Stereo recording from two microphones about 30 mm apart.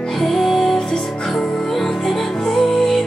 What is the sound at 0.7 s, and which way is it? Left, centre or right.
Music, centre.